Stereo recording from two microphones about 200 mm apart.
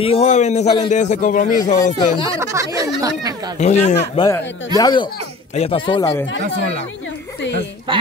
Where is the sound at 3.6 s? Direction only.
35° left (ahead or behind).